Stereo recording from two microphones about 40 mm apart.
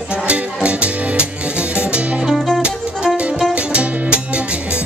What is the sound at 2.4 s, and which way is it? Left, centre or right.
Music, centre.